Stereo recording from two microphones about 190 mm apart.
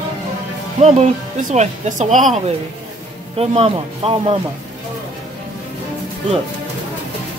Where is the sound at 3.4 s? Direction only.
30° right (ahead or behind).